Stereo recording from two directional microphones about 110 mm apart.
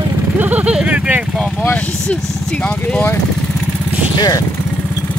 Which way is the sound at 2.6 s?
10° left (ahead or behind).